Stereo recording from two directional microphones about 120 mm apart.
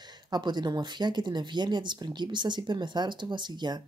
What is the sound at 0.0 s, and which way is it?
Speech, 35° right (ahead or behind).